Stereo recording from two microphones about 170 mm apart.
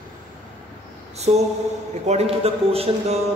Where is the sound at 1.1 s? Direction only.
40° right (ahead or behind).